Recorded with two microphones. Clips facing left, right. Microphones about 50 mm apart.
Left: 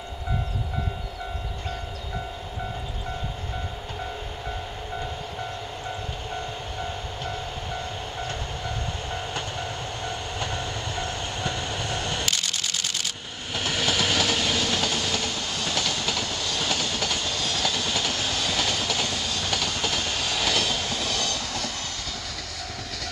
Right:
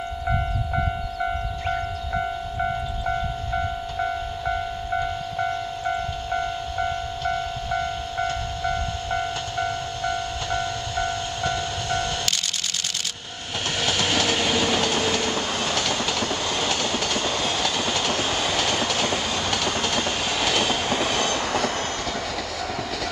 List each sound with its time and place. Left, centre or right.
8.6 s train: left
13.7 s train: centre
15.2 s train: right
15.7 s train: centre
17.2 s train: right
19.5 s train: centre
20.0 s train: centre; by 21.7 s right